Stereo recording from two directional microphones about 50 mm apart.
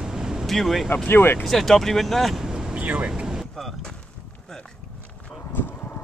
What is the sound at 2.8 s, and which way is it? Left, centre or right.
Speech, right.